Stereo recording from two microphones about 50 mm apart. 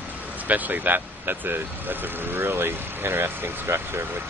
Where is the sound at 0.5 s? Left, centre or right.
Right.